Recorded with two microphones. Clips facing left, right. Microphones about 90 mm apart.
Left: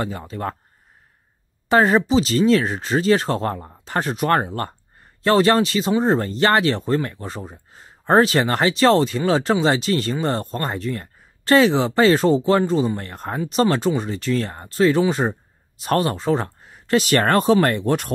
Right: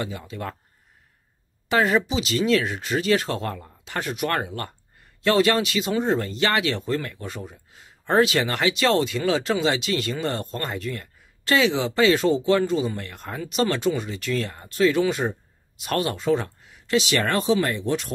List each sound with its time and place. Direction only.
0.0 s speech: 40° left (ahead or behind)
1.7 s speech: 40° left (ahead or behind); by 18.1 s 55° left (ahead or behind)